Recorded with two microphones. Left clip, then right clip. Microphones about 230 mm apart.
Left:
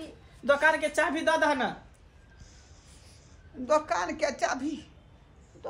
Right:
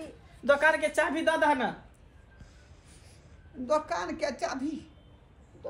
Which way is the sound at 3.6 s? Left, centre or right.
Centre.